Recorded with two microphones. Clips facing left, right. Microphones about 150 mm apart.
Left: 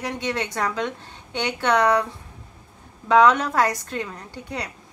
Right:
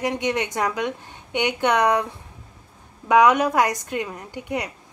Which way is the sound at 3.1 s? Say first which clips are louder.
Right 1 dB; 15° right (ahead or behind).